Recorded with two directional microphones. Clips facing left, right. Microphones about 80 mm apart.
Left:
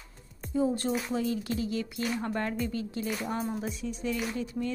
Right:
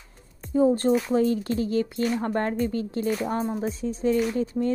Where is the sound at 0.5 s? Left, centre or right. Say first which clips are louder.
Right 8 dB; right.